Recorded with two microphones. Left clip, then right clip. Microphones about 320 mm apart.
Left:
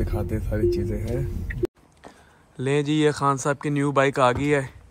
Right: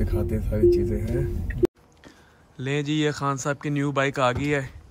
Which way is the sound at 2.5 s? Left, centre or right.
Centre.